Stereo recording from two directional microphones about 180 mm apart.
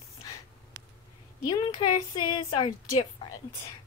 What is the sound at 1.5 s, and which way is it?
A woman's voice, 25° left (ahead or behind).